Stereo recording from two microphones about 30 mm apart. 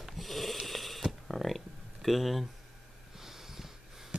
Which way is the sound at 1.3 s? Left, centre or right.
Centre.